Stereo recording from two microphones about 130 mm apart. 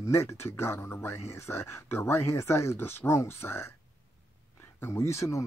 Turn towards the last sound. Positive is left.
turn(degrees=20)  # may be behind; listen again after turning